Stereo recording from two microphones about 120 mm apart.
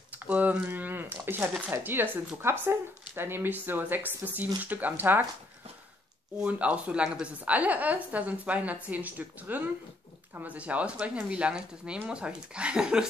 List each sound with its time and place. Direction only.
0.1 s a woman's voice: 15° right (ahead or behind)
6.4 s a woman's voice: 10° right (ahead or behind)